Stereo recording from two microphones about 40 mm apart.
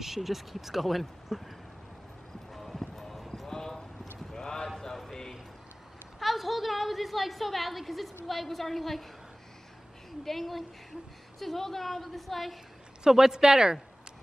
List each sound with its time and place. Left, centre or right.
0.0 s a woman's voice: centre
2.5 s clip-clop: centre
6.1 s a sound: centre
8.3 s a woman's voice: centre
10.2 s a woman's voice: centre
13.0 s speech: centre